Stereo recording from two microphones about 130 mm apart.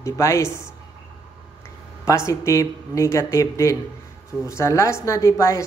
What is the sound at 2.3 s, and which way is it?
A man's voice, 25° left (ahead or behind).